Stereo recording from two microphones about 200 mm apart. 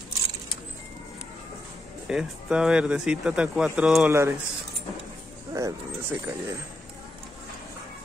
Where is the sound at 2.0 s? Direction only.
5° right (ahead or behind).